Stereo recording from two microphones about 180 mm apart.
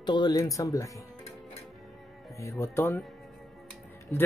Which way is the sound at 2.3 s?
15° left (ahead or behind).